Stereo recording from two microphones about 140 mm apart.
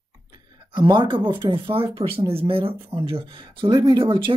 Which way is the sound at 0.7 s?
35° right (ahead or behind).